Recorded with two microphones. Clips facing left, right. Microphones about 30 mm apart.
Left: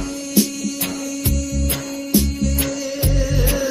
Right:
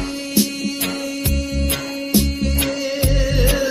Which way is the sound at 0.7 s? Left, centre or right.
Right.